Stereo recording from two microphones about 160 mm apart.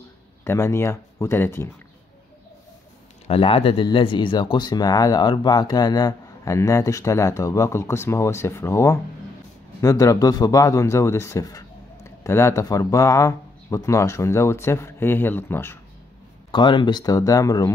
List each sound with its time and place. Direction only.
0.4 s speech: 15° left (ahead or behind)
3.3 s a man's voice: 35° left (ahead or behind); by 15.8 s 15° left (ahead or behind)
16.5 s a man's voice: 30° left (ahead or behind)